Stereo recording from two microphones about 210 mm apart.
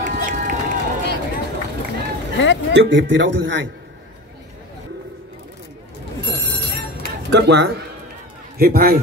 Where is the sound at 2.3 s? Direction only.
60° left (ahead or behind).